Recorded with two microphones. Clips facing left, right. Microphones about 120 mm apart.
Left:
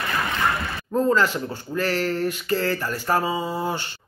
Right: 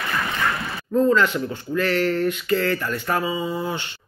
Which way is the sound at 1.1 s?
40° left (ahead or behind).